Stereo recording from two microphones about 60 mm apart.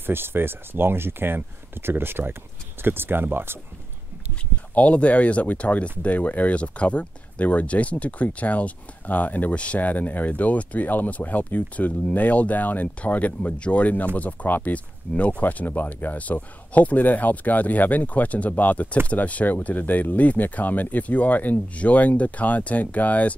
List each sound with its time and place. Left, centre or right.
0.0 s speech: right
4.7 s speech: left